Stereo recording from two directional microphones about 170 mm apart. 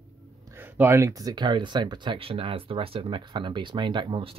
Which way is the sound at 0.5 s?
10° right (ahead or behind).